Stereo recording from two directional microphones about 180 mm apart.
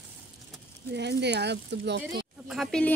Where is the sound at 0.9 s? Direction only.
70° right (ahead or behind).